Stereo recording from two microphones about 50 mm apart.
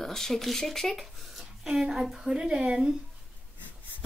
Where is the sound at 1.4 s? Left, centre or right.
Centre.